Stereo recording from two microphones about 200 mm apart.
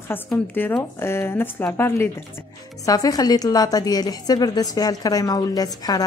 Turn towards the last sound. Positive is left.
turn(degrees=20)  # may be behind; listen again after turning